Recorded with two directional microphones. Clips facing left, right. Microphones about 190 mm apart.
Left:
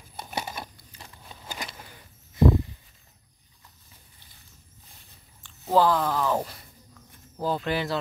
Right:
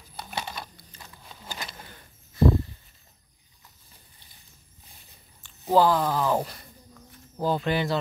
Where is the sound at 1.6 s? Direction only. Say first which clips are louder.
Even; 10° left (ahead or behind).